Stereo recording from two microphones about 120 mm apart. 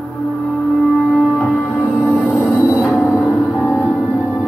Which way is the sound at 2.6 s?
Centre (ahead or behind).